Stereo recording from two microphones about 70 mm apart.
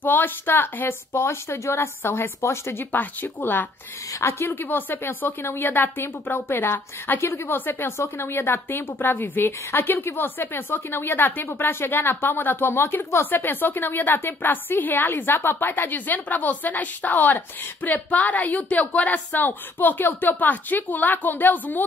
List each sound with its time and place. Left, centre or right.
0.0 s a woman's voice: left
4.1 s a woman's voice: left
4.5 s a woman's voice: left